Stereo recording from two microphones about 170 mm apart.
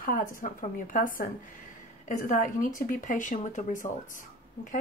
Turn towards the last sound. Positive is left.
turn(degrees=50)  # may be behind; listen again after turning